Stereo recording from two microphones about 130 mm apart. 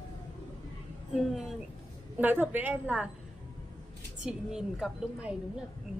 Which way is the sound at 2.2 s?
15° right (ahead or behind).